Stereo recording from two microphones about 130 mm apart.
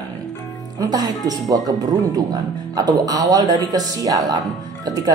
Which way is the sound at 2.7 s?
30° right (ahead or behind).